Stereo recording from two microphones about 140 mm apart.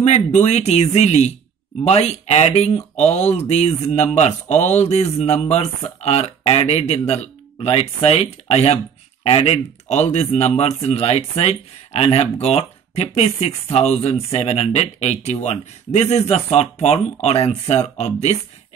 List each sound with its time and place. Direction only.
0.0 s speech: 55° left (ahead or behind)